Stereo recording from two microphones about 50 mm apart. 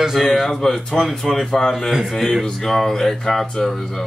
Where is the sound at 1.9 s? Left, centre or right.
Centre.